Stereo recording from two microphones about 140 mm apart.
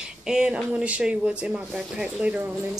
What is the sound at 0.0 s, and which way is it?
Speech, 5° right (ahead or behind).